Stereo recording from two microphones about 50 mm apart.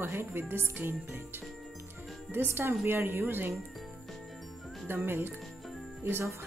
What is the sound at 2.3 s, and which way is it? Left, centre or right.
Speech, right.